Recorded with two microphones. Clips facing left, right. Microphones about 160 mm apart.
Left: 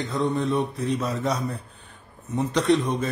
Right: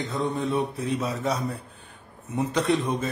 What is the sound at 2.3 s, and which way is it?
Speech, 5° right (ahead or behind).